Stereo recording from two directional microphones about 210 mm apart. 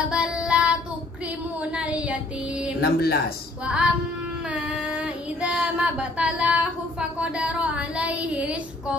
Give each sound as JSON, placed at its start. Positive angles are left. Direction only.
{"t": 0.1, "sound": "child singing", "side_deg": -5}
{"t": 1.6, "sound": "a sound", "side_deg": -5}
{"t": 2.8, "sound": "speech", "side_deg": 50}
{"t": 3.6, "sound": "child singing", "side_deg": -5}